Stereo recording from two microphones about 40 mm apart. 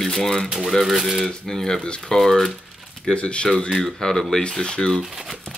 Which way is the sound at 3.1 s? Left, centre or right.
Left.